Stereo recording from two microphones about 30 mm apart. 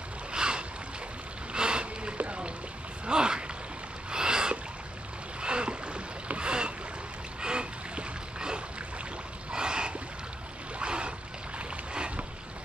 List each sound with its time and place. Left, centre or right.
0.3 s boat: right
2.1 s rowboat: right
3.1 s gasp: right
4.1 s a sound: right
5.4 s boat: right
9.5 s a sound: right
10.8 s boat: right